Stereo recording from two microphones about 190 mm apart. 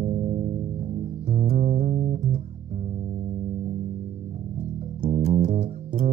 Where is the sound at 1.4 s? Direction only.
50° right (ahead or behind).